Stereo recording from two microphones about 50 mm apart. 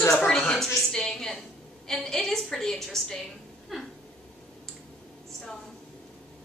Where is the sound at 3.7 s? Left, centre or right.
Centre.